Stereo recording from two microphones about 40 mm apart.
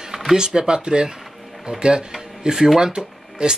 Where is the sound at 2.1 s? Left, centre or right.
Centre.